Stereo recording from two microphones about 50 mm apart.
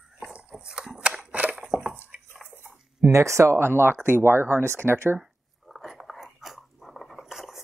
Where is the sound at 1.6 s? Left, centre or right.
Centre.